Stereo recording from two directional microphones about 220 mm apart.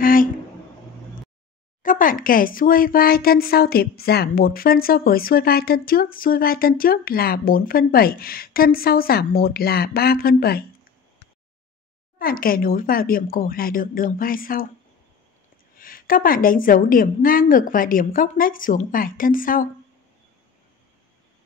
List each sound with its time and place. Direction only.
0.0 s a sound: 40° left (ahead or behind)
1.8 s speech: 35° left (ahead or behind)
12.2 s a woman's voice: 40° left (ahead or behind)
15.8 s a woman's voice: 40° left (ahead or behind)